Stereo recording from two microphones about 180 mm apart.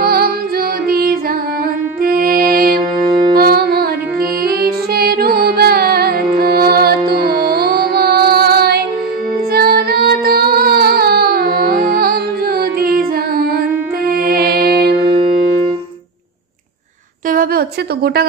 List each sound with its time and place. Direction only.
0.0 s music: 55° right (ahead or behind)
3.0 s music: 25° right (ahead or behind)
3.3 s music: 55° right (ahead or behind)
15.0 s music: 30° right (ahead or behind)
17.3 s a sound: 55° right (ahead or behind)